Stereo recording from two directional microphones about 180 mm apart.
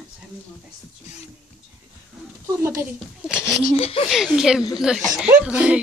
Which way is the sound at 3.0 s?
5° right (ahead or behind).